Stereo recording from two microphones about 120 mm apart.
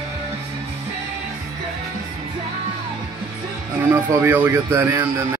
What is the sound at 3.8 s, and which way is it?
Speech, 20° right (ahead or behind).